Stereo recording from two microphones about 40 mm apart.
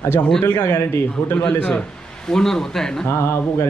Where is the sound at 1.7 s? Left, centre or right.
Centre.